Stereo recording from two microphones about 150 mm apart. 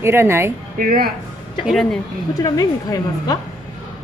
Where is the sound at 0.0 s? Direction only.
15° right (ahead or behind).